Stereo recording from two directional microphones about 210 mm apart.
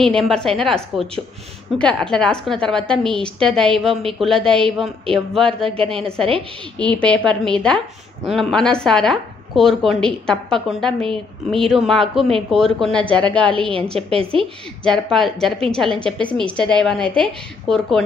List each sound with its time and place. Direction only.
0.0 s a woman's voice: centre (ahead or behind)
5.6 s a woman's voice: 25° right (ahead or behind)
6.8 s a woman's voice: 5° left (ahead or behind)
13.9 s a woman's voice: 25° right (ahead or behind)
14.8 s a woman's voice: 5° left (ahead or behind)